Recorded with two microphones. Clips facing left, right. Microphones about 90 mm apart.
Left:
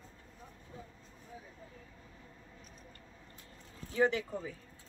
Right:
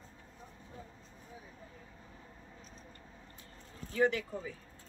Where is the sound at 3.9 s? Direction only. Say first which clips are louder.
Even; 25° left (ahead or behind).